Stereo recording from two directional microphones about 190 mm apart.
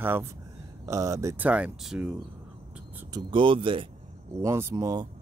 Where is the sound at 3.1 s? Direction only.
25° right (ahead or behind).